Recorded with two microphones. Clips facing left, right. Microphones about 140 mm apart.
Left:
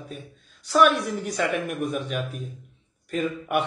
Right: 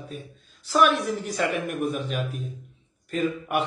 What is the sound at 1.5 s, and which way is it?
Speech, 40° right (ahead or behind).